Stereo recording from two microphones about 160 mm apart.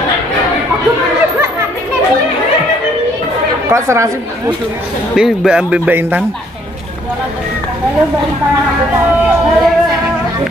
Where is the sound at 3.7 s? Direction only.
15° right (ahead or behind).